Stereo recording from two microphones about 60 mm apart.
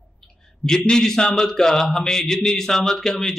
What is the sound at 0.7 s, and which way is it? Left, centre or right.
A man's voice, centre.